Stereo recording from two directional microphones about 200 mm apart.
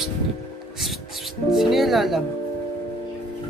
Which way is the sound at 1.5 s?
Centre (ahead or behind).